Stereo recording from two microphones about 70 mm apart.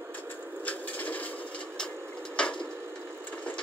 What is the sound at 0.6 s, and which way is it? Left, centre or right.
Wood, left.